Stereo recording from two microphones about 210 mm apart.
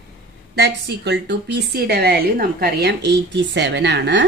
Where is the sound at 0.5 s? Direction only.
55° right (ahead or behind).